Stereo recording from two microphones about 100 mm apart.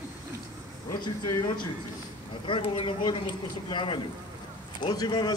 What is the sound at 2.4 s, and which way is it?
A man's voice, 60° left (ahead or behind).